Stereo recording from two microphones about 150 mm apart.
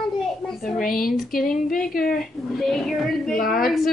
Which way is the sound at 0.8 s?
75° left (ahead or behind).